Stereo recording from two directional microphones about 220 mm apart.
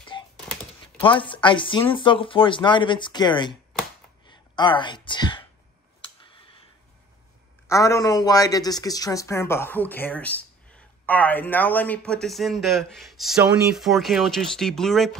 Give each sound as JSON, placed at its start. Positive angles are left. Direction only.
{"t": 0.1, "sound": "a sound", "side_deg": 20}
{"t": 1.0, "sound": "speech", "side_deg": 25}
{"t": 7.6, "sound": "speech", "side_deg": 15}